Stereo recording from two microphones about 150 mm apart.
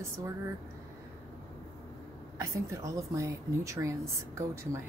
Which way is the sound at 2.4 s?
20° right (ahead or behind).